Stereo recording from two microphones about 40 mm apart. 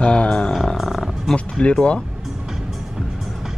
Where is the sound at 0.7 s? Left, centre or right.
Centre.